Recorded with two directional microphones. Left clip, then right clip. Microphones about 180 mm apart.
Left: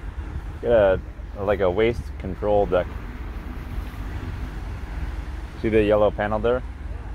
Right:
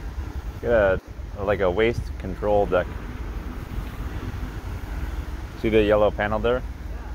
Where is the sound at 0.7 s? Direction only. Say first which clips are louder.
Left 2 dB; 20° left (ahead or behind).